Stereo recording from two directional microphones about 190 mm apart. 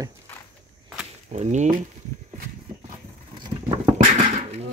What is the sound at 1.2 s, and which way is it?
Speech, 40° right (ahead or behind).